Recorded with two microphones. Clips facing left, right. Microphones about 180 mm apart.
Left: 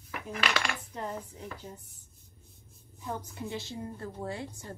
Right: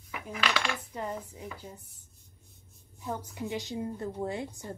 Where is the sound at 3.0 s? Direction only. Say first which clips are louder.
Right 2 dB; 15° right (ahead or behind).